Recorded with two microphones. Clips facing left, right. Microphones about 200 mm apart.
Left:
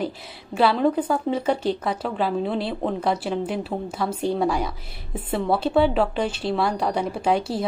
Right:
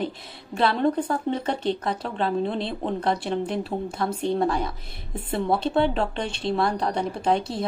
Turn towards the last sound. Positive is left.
turn(degrees=10)  # may be behind; listen again after turning